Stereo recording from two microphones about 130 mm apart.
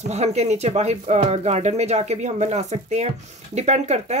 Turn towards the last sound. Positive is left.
turn(degrees=-60)  # may be behind; listen again after turning